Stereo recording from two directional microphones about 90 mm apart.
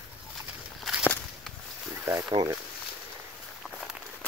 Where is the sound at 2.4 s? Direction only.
50° right (ahead or behind).